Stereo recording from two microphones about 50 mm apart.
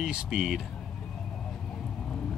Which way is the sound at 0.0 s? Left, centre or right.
Centre.